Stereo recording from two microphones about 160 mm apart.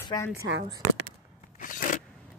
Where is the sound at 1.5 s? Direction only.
55° left (ahead or behind).